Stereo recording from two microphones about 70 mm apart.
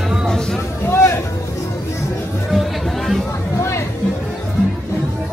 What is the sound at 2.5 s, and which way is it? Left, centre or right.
Music, centre.